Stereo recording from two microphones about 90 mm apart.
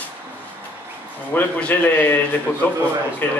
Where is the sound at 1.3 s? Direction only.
15° left (ahead or behind).